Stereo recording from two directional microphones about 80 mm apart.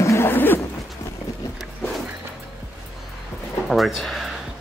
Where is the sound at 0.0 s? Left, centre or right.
Left.